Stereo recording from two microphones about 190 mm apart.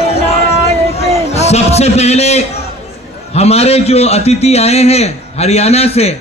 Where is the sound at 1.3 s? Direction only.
35° left (ahead or behind).